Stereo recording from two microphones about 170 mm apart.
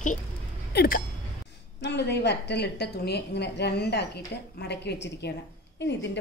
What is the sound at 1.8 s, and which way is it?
A woman's voice, 80° left.